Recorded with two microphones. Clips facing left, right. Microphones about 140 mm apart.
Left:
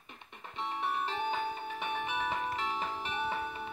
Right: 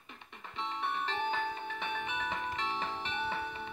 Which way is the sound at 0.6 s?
10° left (ahead or behind).